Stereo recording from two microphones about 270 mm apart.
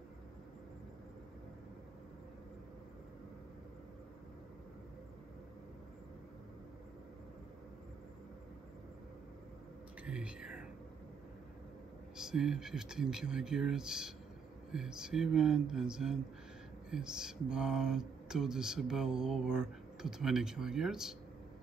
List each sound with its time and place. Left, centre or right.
10.0 s whispering: centre
12.2 s speech: centre